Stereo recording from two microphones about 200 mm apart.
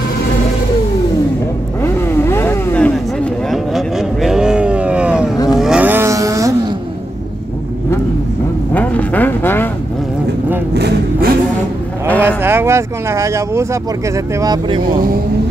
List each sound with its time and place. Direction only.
1.8 s vehicle: 10° left (ahead or behind)
3.4 s vehicle: centre (ahead or behind)
8.7 s vehicle: 10° left (ahead or behind)
10.7 s vehicle: 50° right (ahead or behind)
12.2 s a sound: 10° right (ahead or behind)
14.1 s speech: 20° right (ahead or behind)